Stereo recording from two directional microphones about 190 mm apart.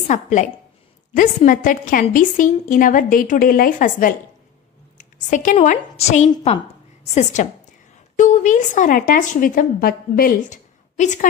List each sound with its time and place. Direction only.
0.1 s a woman's voice: 40° left (ahead or behind)
5.3 s a woman's voice: 40° left (ahead or behind)
7.4 s a woman's voice: 40° left (ahead or behind)